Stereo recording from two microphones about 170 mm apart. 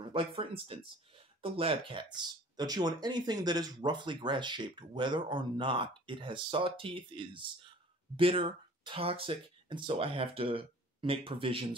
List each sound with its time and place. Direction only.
0.0 s speech: 30° right (ahead or behind)